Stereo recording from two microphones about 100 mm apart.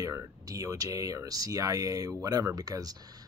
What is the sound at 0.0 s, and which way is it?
Speech, 35° right (ahead or behind).